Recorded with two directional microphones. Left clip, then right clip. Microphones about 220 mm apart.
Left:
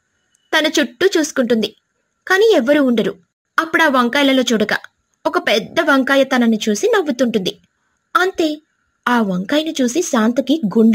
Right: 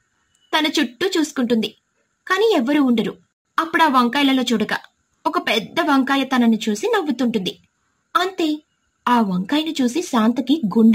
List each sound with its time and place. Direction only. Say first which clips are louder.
0.5 s a woman's voice: left 4 dB; 20° left (ahead or behind)